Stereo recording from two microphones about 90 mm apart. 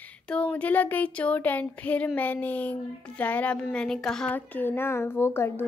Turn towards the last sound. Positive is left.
turn(degrees=25)  # may be behind; listen again after turning